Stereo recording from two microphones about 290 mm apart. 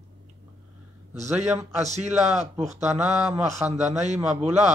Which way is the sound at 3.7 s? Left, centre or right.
Right.